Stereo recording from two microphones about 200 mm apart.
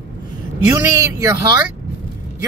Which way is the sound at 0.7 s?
15° right (ahead or behind).